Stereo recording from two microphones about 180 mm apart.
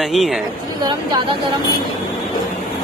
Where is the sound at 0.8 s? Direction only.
25° right (ahead or behind).